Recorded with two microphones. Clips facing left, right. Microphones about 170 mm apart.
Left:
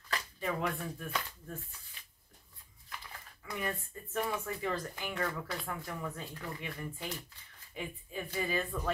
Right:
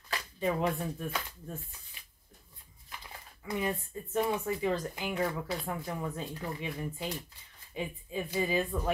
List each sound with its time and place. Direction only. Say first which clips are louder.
0.4 s speech: right 6 dB; 25° right (ahead or behind)
3.4 s speech: right 5 dB; 20° right (ahead or behind)